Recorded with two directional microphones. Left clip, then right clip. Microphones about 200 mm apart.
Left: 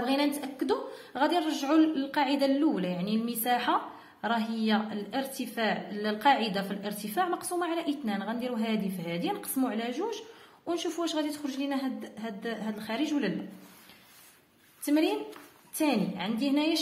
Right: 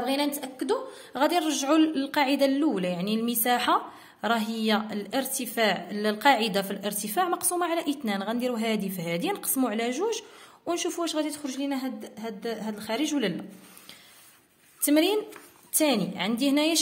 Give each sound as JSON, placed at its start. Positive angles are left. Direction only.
{"t": 0.0, "sound": "a woman's voice", "side_deg": -20}
{"t": 14.9, "sound": "a woman's voice", "side_deg": -45}